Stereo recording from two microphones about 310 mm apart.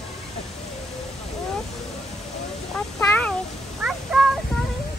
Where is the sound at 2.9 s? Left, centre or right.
Centre.